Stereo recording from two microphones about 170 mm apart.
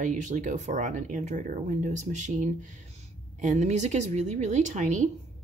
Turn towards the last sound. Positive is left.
turn(degrees=-45)  # may be behind; listen again after turning